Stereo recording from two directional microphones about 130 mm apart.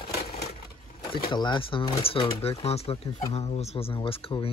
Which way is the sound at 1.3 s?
35° left (ahead or behind).